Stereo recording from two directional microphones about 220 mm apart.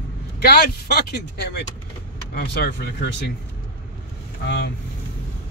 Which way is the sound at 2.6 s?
50° left (ahead or behind).